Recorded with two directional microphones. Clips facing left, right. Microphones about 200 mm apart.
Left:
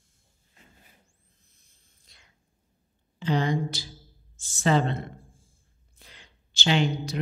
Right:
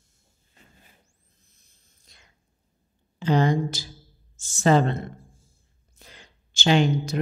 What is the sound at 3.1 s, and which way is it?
A woman's voice, 45° right (ahead or behind).